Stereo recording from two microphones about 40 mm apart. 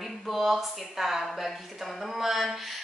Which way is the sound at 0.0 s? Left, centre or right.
Centre.